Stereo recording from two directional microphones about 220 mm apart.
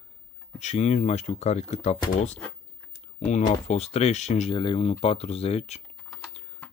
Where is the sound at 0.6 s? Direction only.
30° left (ahead or behind).